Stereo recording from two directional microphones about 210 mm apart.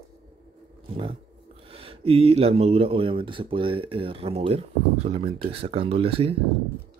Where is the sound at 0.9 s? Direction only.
25° right (ahead or behind).